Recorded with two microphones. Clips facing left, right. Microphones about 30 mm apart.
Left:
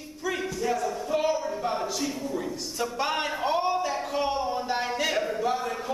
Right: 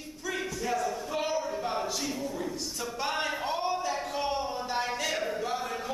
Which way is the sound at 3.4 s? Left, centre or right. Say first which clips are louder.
Left 5 dB; centre.